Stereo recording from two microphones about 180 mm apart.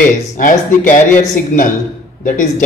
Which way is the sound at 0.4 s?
50° left (ahead or behind).